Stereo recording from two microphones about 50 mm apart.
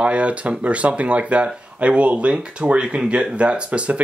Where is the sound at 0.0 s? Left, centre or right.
Right.